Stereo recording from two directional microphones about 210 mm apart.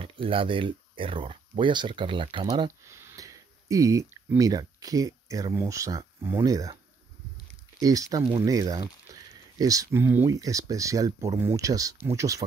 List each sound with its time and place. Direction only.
0.0 s speech: 25° right (ahead or behind)
7.8 s speech: 15° right (ahead or behind)